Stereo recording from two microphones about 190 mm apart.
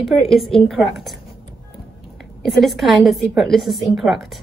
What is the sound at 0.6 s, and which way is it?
Speech, centre (ahead or behind).